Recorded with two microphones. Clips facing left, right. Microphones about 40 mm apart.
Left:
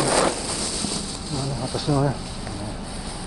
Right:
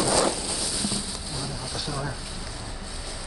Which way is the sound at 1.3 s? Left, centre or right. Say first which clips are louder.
Left 9 dB; centre.